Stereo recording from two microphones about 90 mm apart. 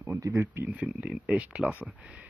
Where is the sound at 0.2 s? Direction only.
35° right (ahead or behind).